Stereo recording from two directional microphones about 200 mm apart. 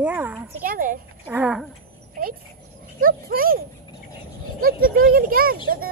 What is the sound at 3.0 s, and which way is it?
Speech, 45° right (ahead or behind).